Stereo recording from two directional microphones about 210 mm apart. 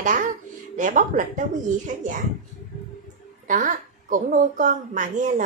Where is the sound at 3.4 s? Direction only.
35° right (ahead or behind).